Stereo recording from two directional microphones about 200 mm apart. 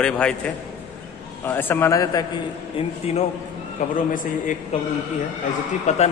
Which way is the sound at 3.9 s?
40° left (ahead or behind).